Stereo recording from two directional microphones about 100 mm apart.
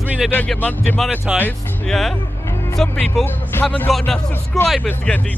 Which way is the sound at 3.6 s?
15° left (ahead or behind).